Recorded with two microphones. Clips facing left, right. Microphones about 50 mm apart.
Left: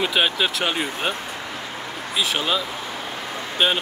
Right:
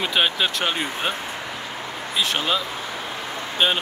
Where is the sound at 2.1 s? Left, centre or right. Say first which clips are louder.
Even; centre.